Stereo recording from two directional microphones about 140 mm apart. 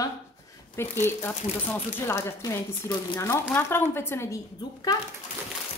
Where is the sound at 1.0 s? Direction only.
15° left (ahead or behind).